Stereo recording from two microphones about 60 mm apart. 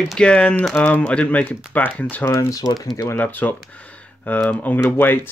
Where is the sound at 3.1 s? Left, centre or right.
Left.